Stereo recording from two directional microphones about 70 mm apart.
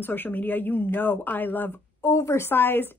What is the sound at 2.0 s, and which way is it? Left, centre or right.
Speech, left.